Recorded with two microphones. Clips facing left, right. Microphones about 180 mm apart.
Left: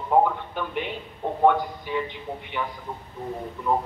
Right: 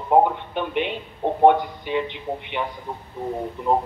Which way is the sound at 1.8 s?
75° right (ahead or behind).